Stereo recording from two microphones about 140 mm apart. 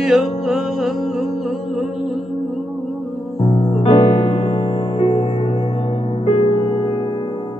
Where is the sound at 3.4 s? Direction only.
45° left (ahead or behind).